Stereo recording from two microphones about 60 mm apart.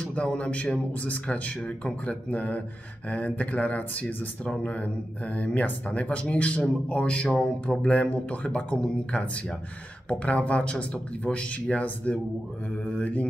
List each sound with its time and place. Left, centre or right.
0.0 s speech: centre